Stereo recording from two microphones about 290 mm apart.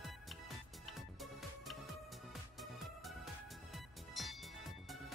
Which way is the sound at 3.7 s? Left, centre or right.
Centre.